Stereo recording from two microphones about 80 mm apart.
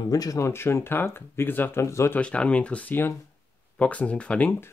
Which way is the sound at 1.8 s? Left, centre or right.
Left.